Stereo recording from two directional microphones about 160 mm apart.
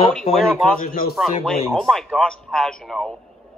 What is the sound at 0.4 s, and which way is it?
Speech, 5° left (ahead or behind).